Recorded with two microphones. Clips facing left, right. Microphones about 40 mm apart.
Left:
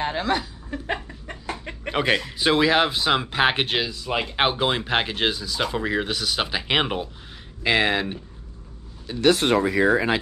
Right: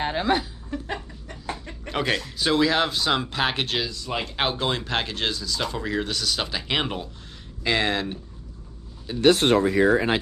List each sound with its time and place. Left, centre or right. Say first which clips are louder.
0.0 s chuckle: right 1 dB; centre
0.7 s a sound: left 3 dB; centre
1.2 s chicken: left 2 dB; left
1.9 s speech: left 3 dB; centre
9.1 s speech: right 1 dB; centre
9.5 s speech: even; left